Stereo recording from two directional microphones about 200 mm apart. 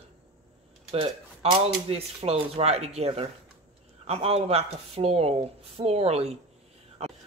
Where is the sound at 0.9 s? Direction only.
30° right (ahead or behind).